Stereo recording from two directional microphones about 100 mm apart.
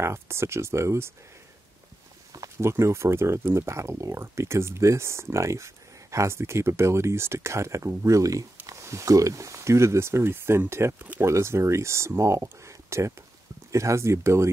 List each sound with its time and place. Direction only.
0.0 s speech: 25° right (ahead or behind)
2.3 s speech: 30° right (ahead or behind)